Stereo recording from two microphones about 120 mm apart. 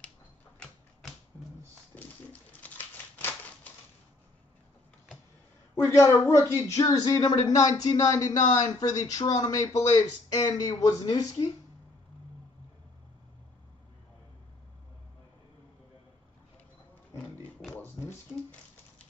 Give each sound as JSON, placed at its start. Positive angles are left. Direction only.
{"t": 2.5, "sound": "typewriter", "side_deg": 15}
{"t": 5.8, "sound": "a woman's voice", "side_deg": 20}
{"t": 7.2, "sound": "speech", "side_deg": 60}
{"t": 7.4, "sound": "speech", "side_deg": 30}